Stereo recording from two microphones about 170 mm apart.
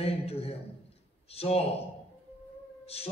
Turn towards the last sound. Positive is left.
turn(degrees=35)  # may be behind; listen again after turning